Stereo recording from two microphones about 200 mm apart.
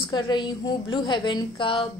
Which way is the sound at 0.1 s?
20° left (ahead or behind).